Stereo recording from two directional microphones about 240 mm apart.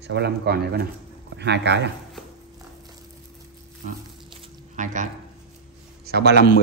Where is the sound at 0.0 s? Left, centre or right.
Right.